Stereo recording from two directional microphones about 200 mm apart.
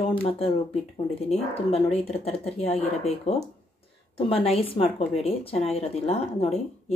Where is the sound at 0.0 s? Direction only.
30° left (ahead or behind).